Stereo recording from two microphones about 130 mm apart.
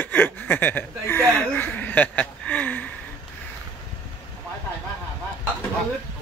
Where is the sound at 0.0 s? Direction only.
15° left (ahead or behind).